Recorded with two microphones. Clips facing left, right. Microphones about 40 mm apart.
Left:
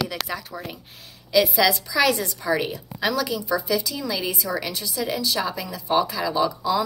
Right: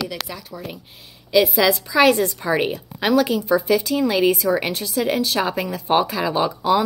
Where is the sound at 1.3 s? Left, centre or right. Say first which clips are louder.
Right 3 dB; right.